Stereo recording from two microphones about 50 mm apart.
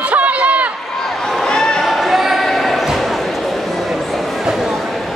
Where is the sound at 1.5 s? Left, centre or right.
Centre.